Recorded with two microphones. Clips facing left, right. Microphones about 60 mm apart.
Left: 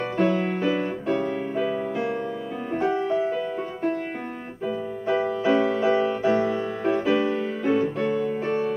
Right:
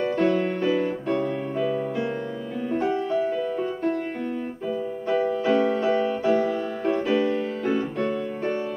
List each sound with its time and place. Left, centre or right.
0.0 s music: centre
4.6 s keyboard: centre
5.4 s music: centre